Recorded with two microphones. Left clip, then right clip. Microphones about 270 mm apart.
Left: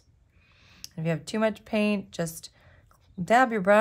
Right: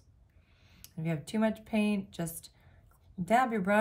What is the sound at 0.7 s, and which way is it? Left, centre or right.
Speech, left.